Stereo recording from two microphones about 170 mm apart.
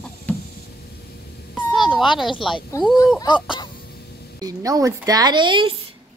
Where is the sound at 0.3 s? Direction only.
10° left (ahead or behind).